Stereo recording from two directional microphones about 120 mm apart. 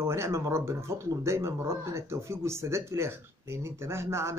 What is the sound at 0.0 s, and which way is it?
Speech, 20° right (ahead or behind).